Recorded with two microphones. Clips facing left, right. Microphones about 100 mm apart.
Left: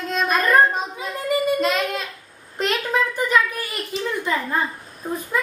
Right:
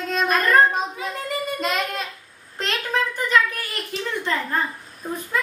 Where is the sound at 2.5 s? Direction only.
15° left (ahead or behind).